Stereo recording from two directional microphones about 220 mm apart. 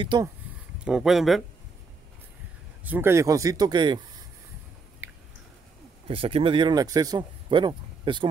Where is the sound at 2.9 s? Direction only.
10° right (ahead or behind).